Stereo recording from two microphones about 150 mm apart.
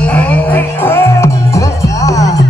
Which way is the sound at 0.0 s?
10° left (ahead or behind).